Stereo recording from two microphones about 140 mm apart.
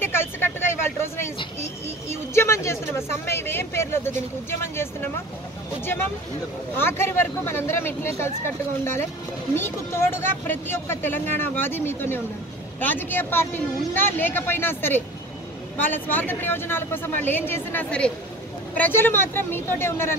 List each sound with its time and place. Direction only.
0.0 s vehicle: 15° left (ahead or behind)
2.0 s speech: 20° left (ahead or behind)
6.8 s speech: 15° left (ahead or behind)
9.6 s speech: 15° left (ahead or behind)